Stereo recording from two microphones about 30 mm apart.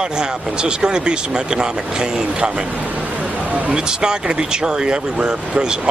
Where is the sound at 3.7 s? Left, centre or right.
Right.